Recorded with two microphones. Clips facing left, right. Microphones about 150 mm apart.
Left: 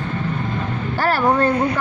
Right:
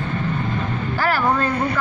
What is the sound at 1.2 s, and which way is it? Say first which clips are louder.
Speech: left 3 dB; 20° left (ahead or behind).